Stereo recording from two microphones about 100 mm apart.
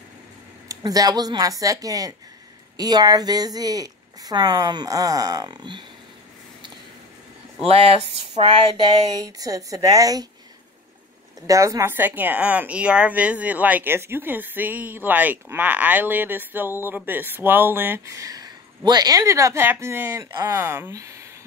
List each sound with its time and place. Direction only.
0.7 s speech: 40° right (ahead or behind)
7.6 s speech: 75° right (ahead or behind)
9.2 s speech: 35° right (ahead or behind)
11.4 s speech: 35° right (ahead or behind)
20.2 s speech: 40° right (ahead or behind)
20.5 s speech: 25° right (ahead or behind)